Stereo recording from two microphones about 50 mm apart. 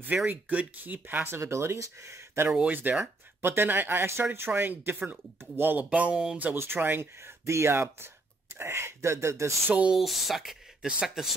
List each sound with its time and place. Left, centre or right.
0.3 s speech: right
1.3 s speech: right
2.5 s speech: right
3.3 s speech: right
5.9 s a sound: right
6.5 s speech: right
7.2 s speech: right
9.9 s speech: centre